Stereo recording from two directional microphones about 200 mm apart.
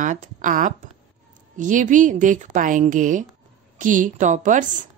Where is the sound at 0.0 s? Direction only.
40° right (ahead or behind).